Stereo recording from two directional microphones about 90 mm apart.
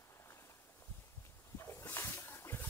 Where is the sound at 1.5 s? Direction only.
30° left (ahead or behind).